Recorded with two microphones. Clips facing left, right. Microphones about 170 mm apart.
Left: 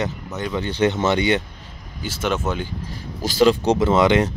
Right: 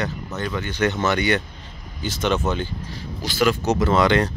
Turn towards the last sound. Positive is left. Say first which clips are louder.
# left 2 dB
turn(degrees=20)  # may be behind; listen again after turning